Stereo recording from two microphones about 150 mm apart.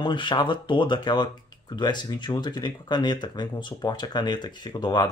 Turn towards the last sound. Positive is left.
turn(degrees=30)  # may be behind; listen again after turning